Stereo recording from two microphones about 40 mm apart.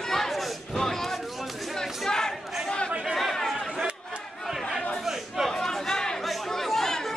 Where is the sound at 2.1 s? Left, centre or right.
Centre.